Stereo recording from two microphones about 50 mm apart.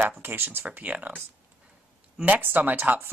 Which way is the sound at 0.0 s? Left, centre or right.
Right.